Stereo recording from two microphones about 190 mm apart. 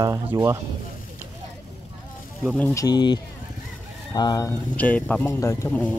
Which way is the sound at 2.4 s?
10° left (ahead or behind).